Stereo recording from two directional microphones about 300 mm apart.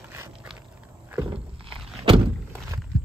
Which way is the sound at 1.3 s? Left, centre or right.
Centre.